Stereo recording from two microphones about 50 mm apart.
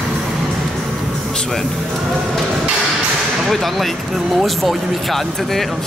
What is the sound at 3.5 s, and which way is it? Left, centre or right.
Speech, centre.